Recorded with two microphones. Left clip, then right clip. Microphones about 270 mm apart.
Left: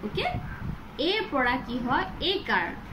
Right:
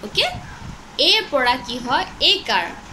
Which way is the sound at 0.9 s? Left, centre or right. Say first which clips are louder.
Right 10 dB; right.